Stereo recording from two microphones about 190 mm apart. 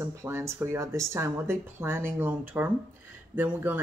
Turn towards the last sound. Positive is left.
turn(degrees=-10)  # may be behind; listen again after turning